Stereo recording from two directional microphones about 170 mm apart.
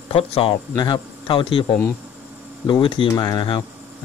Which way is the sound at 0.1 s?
35° left (ahead or behind).